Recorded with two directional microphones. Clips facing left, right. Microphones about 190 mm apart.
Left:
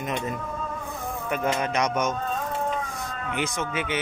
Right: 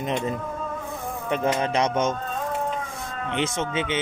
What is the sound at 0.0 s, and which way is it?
Speech, 30° right (ahead or behind).